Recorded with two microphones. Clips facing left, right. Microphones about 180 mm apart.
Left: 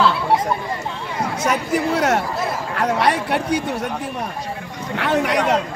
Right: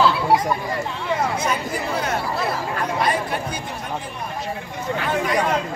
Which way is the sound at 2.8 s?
75° left (ahead or behind).